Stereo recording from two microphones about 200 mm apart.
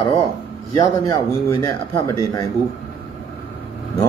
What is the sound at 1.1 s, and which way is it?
A man's voice, 15° left (ahead or behind).